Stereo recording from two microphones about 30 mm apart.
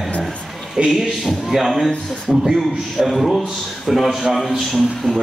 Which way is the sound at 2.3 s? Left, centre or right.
Centre.